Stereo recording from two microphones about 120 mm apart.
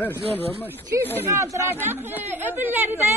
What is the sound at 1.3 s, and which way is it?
Speech, 25° right (ahead or behind).